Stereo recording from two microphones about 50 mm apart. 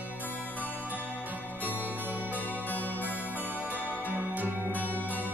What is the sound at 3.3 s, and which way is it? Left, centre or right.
Music, right.